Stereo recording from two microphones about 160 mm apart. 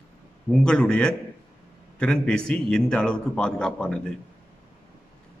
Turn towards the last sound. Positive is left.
turn(degrees=5)  # may be behind; listen again after turning